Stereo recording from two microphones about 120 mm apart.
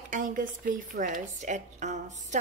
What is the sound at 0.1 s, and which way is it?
A woman's voice, 90° right.